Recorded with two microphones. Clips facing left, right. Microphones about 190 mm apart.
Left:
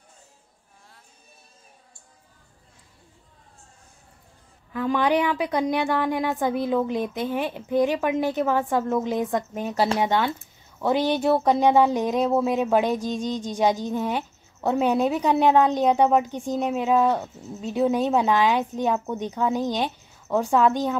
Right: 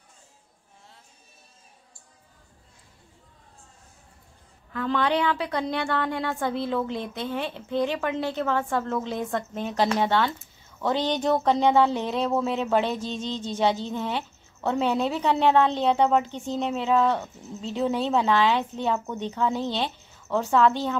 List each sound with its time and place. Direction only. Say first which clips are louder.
4.7 s speech: left 3 dB; 15° left (ahead or behind)